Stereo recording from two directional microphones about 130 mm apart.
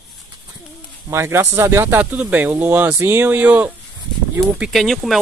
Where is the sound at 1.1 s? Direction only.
20° right (ahead or behind).